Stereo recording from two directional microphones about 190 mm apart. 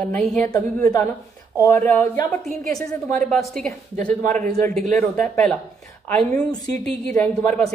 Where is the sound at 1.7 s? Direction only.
10° left (ahead or behind).